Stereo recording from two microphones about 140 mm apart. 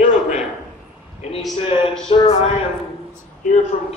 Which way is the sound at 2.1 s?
45° left (ahead or behind).